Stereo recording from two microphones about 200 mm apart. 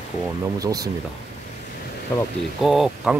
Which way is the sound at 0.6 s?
20° right (ahead or behind).